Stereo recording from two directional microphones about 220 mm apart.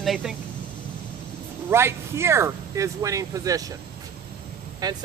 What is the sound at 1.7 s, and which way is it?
Speech, 10° right (ahead or behind).